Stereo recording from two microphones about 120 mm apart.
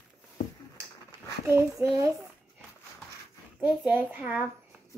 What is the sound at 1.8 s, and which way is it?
Speech, 25° right (ahead or behind).